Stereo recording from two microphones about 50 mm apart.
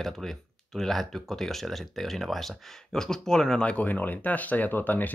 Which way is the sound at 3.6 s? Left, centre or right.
Left.